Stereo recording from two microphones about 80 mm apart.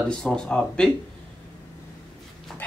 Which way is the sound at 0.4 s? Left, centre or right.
Centre.